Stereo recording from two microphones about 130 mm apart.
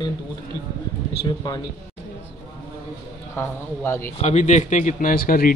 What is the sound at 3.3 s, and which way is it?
Speech, 20° left (ahead or behind).